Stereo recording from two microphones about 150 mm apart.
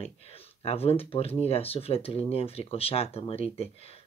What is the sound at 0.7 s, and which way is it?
Speech, 40° left (ahead or behind).